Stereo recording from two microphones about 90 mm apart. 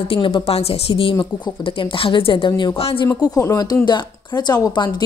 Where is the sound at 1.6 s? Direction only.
80° left.